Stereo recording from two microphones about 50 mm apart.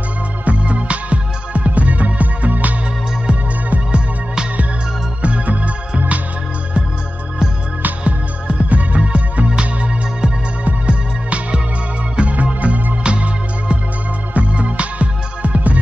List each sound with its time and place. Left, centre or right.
0.5 s music: right
3.3 s music: right
7.8 s music: right